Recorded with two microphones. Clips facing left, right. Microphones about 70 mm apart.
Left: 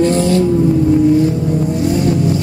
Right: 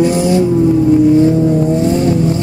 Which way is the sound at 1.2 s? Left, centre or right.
Right.